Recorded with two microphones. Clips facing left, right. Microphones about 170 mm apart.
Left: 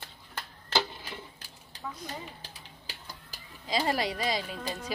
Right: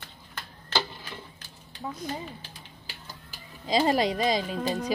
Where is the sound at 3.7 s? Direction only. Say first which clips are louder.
Right 6 dB; 20° right (ahead or behind).